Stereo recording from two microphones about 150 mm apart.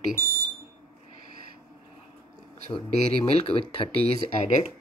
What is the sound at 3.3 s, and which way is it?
Speech, 40° left (ahead or behind).